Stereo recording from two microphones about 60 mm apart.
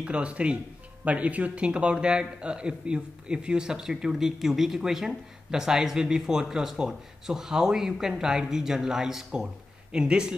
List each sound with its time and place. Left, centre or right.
0.0 s speech: right